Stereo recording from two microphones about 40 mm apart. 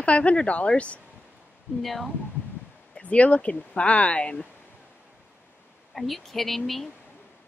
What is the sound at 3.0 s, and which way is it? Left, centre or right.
Speech, left.